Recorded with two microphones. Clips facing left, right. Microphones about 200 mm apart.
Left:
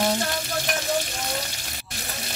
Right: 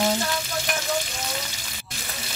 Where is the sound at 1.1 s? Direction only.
50° left (ahead or behind).